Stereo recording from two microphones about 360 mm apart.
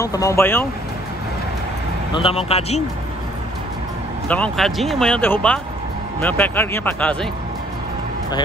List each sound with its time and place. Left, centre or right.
0.0 s speech: centre
2.1 s speech: centre
4.3 s speech: centre